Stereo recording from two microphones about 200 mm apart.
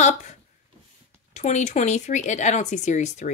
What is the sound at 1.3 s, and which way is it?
Speech, 35° left (ahead or behind).